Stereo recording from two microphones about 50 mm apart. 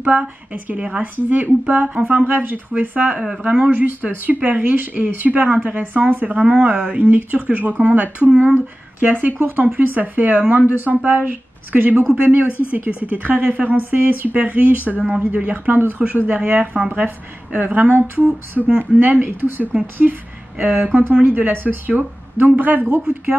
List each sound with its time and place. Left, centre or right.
0.0 s speech: right
3.2 s speech: centre
3.7 s speech: right
7.0 s speech: right
12.4 s speech: left
12.7 s speech: right
19.2 s speech: right